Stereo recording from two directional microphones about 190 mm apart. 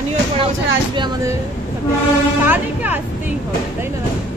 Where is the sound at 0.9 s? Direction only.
25° right (ahead or behind).